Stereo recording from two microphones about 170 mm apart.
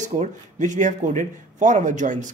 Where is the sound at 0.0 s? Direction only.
45° right (ahead or behind).